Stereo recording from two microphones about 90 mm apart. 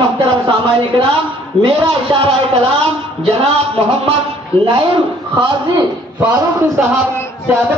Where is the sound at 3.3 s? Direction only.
90° right.